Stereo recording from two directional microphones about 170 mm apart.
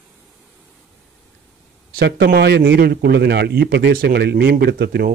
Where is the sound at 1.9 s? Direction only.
75° right (ahead or behind).